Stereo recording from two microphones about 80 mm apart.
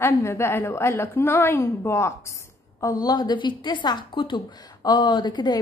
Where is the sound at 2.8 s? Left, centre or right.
Left.